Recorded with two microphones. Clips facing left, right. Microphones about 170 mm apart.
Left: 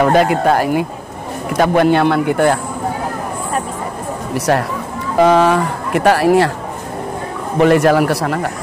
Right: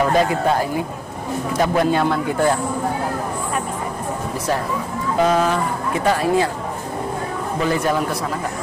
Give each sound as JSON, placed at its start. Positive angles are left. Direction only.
{"t": 0.0, "sound": "speech", "side_deg": 70}
{"t": 4.3, "sound": "speech", "side_deg": 75}
{"t": 7.5, "sound": "speech", "side_deg": 75}